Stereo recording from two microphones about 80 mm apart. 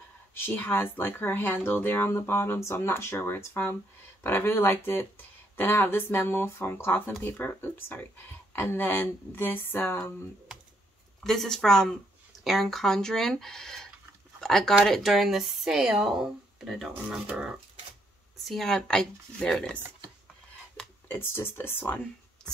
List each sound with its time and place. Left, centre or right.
0.3 s speech: left
11.2 s speech: centre
17.3 s speech: centre
18.4 s speech: centre
20.8 s a sound: centre
21.1 s speech: left